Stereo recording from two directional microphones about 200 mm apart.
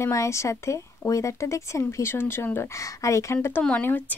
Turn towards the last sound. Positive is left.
turn(degrees=10)  # may be behind; listen again after turning